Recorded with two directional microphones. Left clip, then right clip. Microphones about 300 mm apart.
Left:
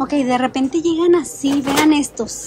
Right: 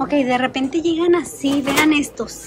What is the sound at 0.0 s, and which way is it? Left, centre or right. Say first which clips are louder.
Speech: even; centre.